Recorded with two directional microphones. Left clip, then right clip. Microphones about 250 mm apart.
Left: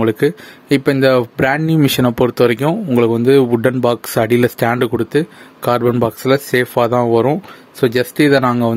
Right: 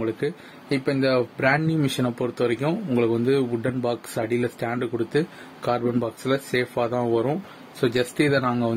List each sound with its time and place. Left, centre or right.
0.0 s speech: left